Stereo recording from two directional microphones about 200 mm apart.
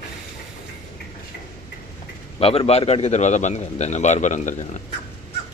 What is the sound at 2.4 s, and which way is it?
A man's voice, 30° left (ahead or behind).